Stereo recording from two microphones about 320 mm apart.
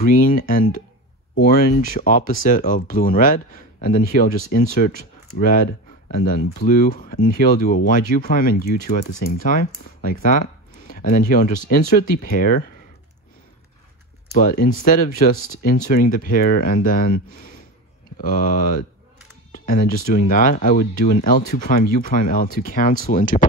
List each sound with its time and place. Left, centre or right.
0.1 s speech: left
14.4 s speech: left